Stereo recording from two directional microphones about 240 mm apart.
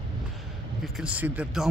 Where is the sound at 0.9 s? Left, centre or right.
Centre.